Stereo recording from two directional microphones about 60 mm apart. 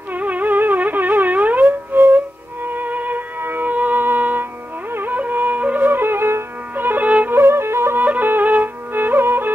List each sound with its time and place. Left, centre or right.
0.1 s music: right
5.9 s music: right
7.3 s music: right
8.0 s music: right